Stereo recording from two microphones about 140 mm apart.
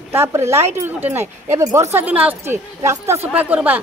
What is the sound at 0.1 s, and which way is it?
A woman's voice, 20° right (ahead or behind).